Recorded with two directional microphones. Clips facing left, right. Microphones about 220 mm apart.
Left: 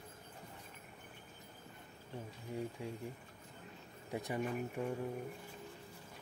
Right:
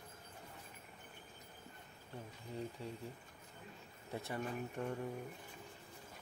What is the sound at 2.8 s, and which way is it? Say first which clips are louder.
Speech: left 3 dB; 15° left (ahead or behind).